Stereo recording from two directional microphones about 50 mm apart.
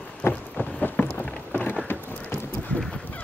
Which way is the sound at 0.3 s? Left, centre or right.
Left.